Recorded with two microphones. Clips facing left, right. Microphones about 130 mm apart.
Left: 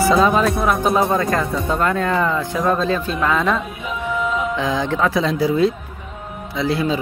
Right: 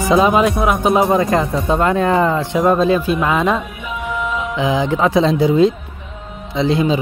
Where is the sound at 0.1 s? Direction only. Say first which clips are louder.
Right 7 dB; 15° right (ahead or behind).